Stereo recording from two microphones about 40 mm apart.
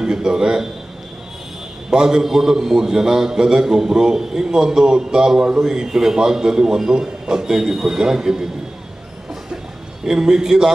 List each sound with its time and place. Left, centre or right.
0.0 s a man's voice: centre
1.9 s a man's voice: centre
10.0 s a man's voice: centre